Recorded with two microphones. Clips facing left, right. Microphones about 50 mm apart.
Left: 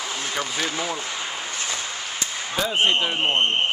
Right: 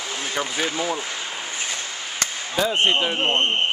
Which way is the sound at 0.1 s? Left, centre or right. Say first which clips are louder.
Right 3 dB; centre.